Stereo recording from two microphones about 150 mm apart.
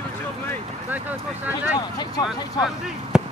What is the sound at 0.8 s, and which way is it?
Speech, 10° right (ahead or behind).